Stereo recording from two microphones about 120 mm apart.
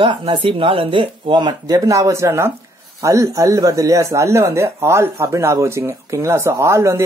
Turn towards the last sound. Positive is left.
turn(degrees=-25)  # may be behind; listen again after turning